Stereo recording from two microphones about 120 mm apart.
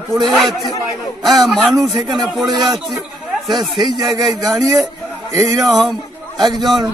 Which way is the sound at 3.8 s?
35° right (ahead or behind).